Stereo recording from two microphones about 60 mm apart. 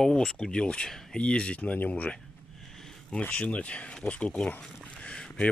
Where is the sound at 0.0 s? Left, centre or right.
Centre; by 2.1 s left.